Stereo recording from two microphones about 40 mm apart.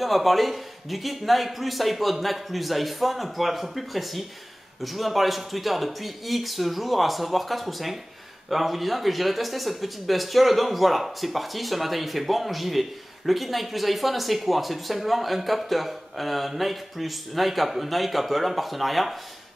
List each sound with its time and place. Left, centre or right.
0.0 s speech: centre